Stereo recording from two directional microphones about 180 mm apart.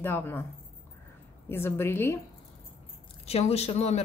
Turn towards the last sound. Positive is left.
turn(degrees=35)  # may be behind; listen again after turning